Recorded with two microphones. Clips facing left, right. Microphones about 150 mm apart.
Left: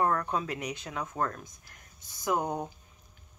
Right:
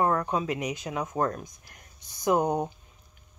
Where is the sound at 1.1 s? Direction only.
25° right (ahead or behind).